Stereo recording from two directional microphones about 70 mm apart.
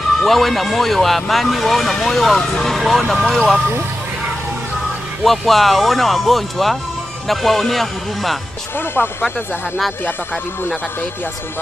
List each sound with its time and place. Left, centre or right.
0.2 s speech: centre
5.2 s speech: centre
8.7 s speech: left